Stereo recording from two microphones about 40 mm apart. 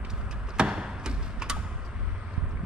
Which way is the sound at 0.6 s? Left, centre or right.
Right.